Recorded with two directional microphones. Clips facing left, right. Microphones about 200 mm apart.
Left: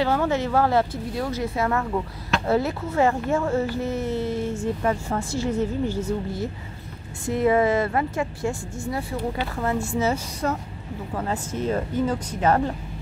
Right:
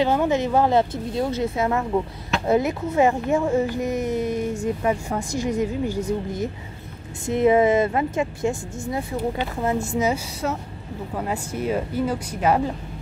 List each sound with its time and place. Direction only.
0.0 s speech: 20° right (ahead or behind)